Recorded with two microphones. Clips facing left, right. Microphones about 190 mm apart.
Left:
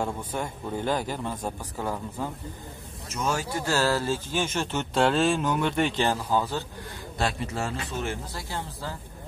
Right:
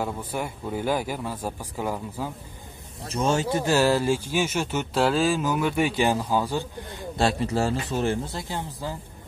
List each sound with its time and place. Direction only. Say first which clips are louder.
0.0 s speech: right 1 dB; 10° right (ahead or behind)
3.1 s speech: right 5 dB; 30° right (ahead or behind); by 6.6 s 10° right (ahead or behind)
7.2 s speech: right 6 dB; 30° right (ahead or behind)
8.4 s speech: right 3 dB; 15° right (ahead or behind)